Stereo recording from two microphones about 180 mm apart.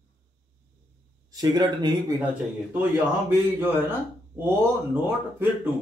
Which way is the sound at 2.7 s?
10° right (ahead or behind).